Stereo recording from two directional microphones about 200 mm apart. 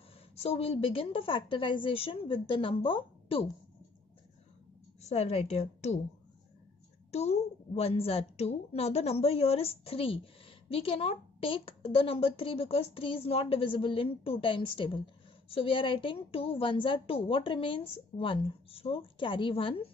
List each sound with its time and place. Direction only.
0.4 s a woman's voice: 30° left (ahead or behind)
5.0 s a woman's voice: 30° left (ahead or behind)
7.1 s a woman's voice: 30° left (ahead or behind)